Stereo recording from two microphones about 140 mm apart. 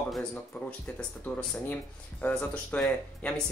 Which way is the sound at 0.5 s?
15° left (ahead or behind).